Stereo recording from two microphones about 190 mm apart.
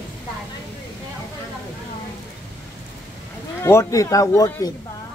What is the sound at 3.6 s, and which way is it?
Speech, 15° left (ahead or behind).